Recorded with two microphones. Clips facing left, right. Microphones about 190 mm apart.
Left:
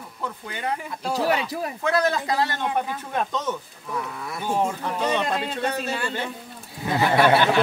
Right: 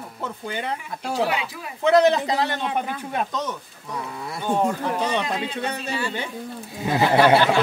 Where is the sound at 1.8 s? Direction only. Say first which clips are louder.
Right 7 dB; 20° right (ahead or behind).